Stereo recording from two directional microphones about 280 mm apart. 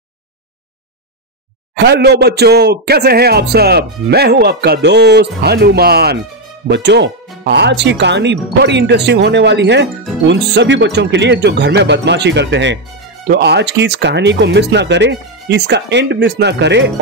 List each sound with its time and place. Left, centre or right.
1.8 s speech: right